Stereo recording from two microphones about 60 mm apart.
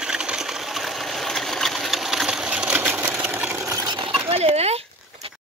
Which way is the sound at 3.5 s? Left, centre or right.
Right.